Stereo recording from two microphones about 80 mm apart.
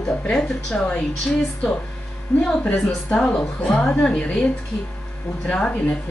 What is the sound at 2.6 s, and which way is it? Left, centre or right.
Speech, centre.